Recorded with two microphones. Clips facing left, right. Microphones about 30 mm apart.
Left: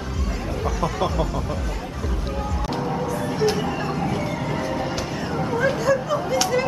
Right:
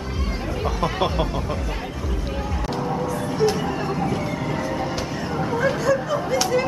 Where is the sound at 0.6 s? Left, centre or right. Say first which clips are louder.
Right 1 dB; right.